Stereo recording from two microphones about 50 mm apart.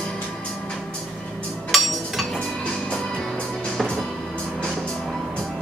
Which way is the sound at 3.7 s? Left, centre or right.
Centre.